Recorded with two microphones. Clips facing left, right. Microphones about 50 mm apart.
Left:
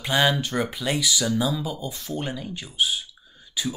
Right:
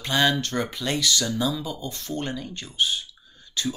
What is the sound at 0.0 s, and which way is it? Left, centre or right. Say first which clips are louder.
Speech: left 1 dB; centre.